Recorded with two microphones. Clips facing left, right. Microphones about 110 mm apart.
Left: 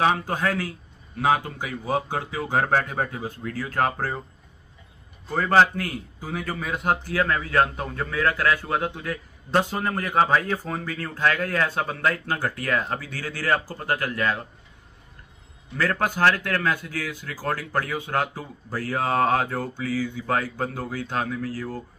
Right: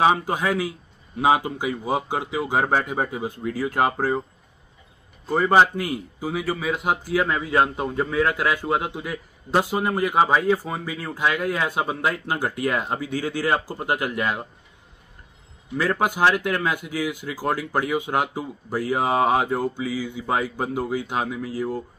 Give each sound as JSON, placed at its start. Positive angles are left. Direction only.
{"t": 0.0, "sound": "a man's voice", "side_deg": -15}
{"t": 5.3, "sound": "a man's voice", "side_deg": -15}
{"t": 15.7, "sound": "a man's voice", "side_deg": -15}